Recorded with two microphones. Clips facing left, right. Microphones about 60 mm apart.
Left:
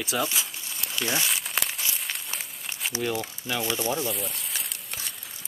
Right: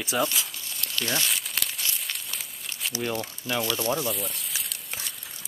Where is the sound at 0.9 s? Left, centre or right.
Centre.